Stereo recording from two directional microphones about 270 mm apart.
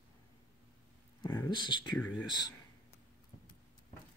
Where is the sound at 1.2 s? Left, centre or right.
Centre.